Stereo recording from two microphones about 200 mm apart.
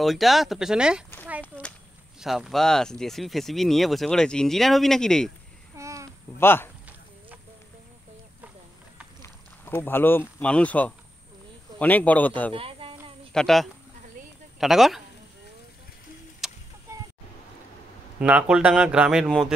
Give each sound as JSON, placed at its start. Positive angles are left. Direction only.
{"t": 0.0, "sound": "speech", "side_deg": 0}
{"t": 2.1, "sound": "speech", "side_deg": 0}
{"t": 5.8, "sound": "babbling", "side_deg": -15}
{"t": 6.4, "sound": "speech", "side_deg": 10}
{"t": 9.2, "sound": "speech", "side_deg": 10}
{"t": 12.5, "sound": "a sound", "side_deg": -25}
{"t": 13.3, "sound": "speech", "side_deg": 0}
{"t": 16.4, "sound": "a sound", "side_deg": 0}
{"t": 16.9, "sound": "a sound", "side_deg": -15}
{"t": 18.2, "sound": "speech", "side_deg": -5}